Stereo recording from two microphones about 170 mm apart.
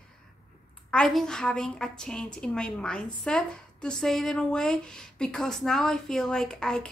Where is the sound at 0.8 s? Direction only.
5° left (ahead or behind).